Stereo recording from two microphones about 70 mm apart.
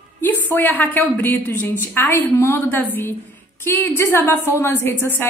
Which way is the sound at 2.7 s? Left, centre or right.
Left.